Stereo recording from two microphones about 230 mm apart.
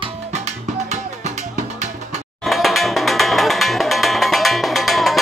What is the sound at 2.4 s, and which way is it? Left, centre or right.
Music, centre.